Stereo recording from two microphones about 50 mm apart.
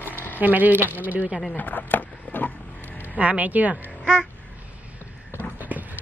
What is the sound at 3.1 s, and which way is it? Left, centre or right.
Speech, right.